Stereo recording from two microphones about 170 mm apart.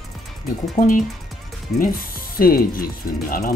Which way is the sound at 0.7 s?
55° left (ahead or behind).